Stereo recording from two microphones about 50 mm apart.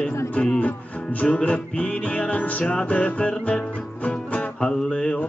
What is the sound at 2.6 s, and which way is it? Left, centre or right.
Music, centre.